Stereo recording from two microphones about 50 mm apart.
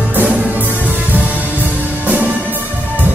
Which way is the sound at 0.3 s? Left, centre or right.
Right.